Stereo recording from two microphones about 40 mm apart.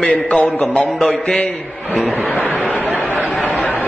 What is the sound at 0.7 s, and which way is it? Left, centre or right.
Speech, centre.